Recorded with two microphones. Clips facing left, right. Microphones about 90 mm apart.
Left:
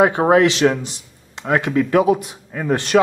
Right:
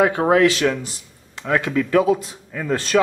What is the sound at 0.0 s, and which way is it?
A man's voice, 25° left (ahead or behind).